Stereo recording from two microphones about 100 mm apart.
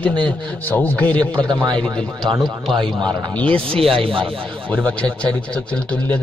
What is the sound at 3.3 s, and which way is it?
A man's voice, 10° left (ahead or behind).